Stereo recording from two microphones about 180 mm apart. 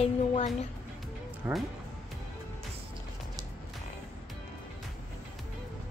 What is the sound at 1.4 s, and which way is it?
Speech, 10° right (ahead or behind).